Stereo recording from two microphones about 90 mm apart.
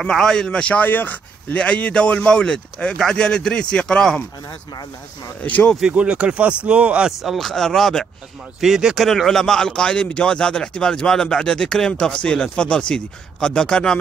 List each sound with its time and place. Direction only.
0.0 s speech: 5° left (ahead or behind)
5.4 s speech: 15° left (ahead or behind)
5.8 s speech: 10° right (ahead or behind); by 13.9 s 10° left (ahead or behind)